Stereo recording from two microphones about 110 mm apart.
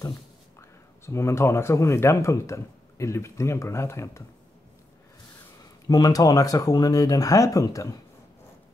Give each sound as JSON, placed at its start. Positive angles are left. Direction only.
{"t": 0.6, "sound": "speech", "side_deg": 25}
{"t": 5.9, "sound": "speech", "side_deg": 35}